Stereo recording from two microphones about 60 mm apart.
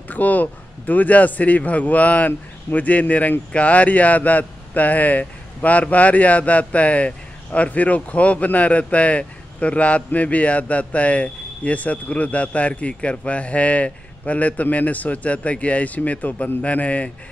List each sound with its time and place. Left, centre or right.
0.1 s a man's voice: left